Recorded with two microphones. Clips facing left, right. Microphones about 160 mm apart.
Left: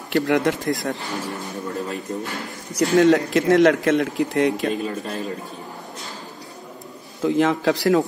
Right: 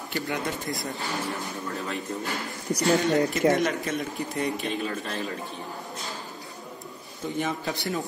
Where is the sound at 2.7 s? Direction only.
90° left.